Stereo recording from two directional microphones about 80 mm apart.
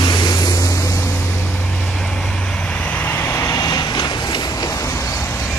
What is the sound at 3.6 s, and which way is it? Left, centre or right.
Vehicle, left.